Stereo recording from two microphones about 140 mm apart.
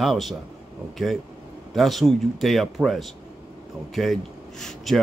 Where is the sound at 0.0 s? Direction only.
Centre (ahead or behind).